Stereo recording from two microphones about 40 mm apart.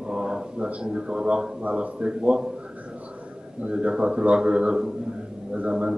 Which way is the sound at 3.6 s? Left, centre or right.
Right.